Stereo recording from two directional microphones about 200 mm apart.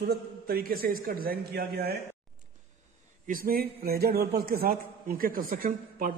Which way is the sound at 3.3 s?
45° right (ahead or behind).